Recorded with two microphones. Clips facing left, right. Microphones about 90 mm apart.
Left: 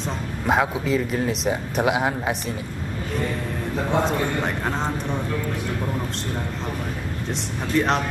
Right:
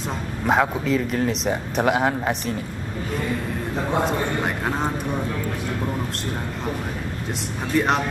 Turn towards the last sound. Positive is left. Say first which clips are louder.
# even
turn(degrees=-5)  # may be behind; listen again after turning